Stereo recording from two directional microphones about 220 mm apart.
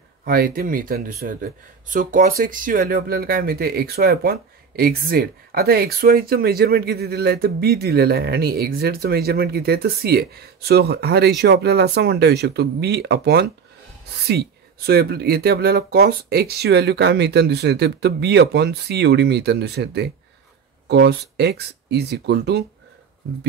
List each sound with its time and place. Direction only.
0.2 s speech: 40° right (ahead or behind)